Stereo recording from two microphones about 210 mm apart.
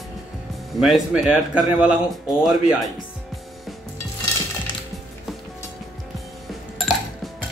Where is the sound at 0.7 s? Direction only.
Centre (ahead or behind).